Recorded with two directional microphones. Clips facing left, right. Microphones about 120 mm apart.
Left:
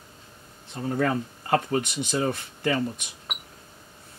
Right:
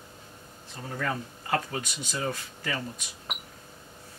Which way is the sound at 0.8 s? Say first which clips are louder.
Left 7 dB; 35° left (ahead or behind).